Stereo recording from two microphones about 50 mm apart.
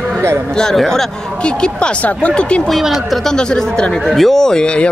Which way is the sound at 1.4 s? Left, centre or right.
Centre.